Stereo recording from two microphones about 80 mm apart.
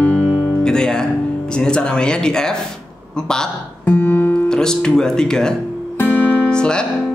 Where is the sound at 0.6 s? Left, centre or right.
Centre.